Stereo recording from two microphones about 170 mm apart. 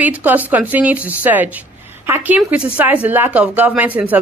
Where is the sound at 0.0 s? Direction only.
10° right (ahead or behind).